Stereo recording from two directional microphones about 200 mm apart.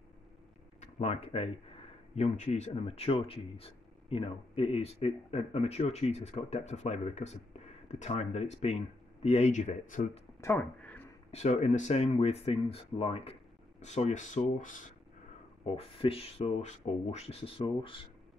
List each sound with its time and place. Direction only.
0.7 s speech: 30° left (ahead or behind)
10.4 s a sound: 10° left (ahead or behind)
11.3 s speech: 35° left (ahead or behind)
15.6 s speech: 30° left (ahead or behind)